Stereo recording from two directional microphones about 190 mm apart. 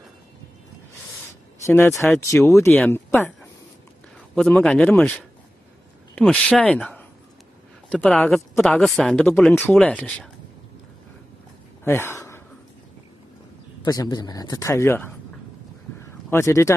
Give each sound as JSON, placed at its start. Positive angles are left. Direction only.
{"t": 2.1, "sound": "speech", "side_deg": 15}
{"t": 4.4, "sound": "speech", "side_deg": 5}
{"t": 11.8, "sound": "a sound", "side_deg": 15}
{"t": 13.8, "sound": "speech", "side_deg": 20}
{"t": 16.3, "sound": "speech", "side_deg": 15}